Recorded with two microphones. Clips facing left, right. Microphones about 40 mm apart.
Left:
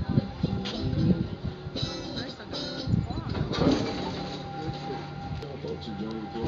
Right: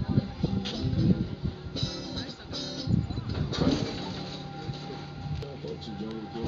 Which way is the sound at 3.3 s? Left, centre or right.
Centre.